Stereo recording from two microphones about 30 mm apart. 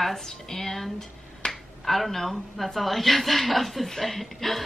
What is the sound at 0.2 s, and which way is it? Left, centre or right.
A woman's voice, centre.